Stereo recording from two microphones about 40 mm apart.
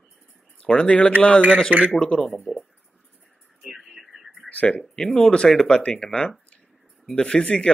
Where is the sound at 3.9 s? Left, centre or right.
Centre.